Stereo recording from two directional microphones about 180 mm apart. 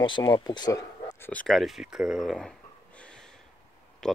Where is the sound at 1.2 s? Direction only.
10° left (ahead or behind).